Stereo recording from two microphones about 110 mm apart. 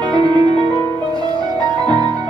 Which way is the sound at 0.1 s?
40° right (ahead or behind).